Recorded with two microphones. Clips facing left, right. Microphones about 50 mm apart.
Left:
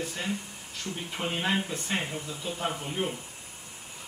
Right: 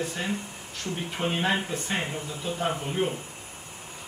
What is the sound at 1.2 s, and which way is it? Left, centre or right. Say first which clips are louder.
Speech: right 4 dB; right.